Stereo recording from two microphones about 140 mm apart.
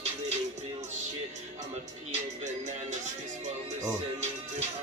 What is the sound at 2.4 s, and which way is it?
Music, 60° right (ahead or behind).